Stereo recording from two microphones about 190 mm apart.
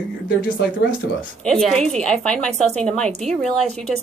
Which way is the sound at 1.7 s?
5° left (ahead or behind).